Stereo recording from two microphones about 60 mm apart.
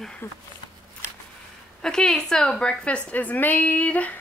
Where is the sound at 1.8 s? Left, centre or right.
Centre.